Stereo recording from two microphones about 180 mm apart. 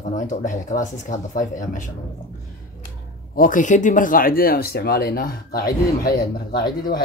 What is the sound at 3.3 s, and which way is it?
Speech, 45° left (ahead or behind).